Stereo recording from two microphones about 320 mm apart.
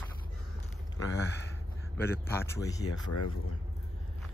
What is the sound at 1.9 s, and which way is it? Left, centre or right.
Speech, centre.